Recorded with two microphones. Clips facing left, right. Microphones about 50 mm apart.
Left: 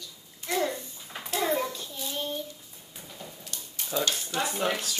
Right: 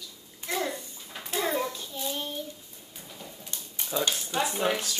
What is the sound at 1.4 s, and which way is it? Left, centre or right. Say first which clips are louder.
Hands: left 1 dB; centre.